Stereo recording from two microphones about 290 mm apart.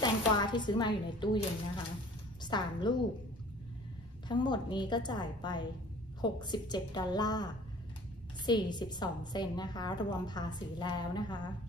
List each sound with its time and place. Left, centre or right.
0.0 s a woman's voice: centre
2.4 s a woman's voice: centre
4.3 s a woman's voice: centre
8.5 s a woman's voice: centre